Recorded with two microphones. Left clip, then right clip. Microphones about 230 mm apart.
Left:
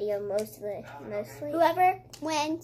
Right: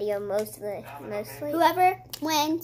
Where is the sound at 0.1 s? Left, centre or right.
Centre.